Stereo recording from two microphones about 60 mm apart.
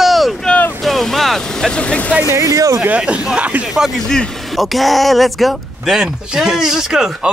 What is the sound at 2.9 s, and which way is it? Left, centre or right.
Speech, centre.